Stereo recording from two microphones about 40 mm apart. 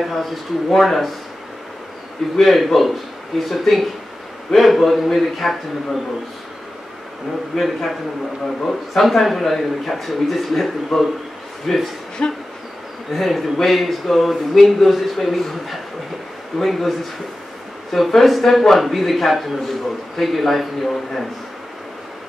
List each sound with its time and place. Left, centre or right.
0.0 s speech: centre
2.3 s speech: centre
7.5 s speech: centre
12.2 s a sound: left
13.1 s speech: centre
17.9 s speech: centre